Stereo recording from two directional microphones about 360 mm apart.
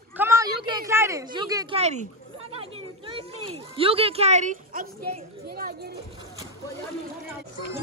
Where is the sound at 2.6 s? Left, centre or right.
Centre.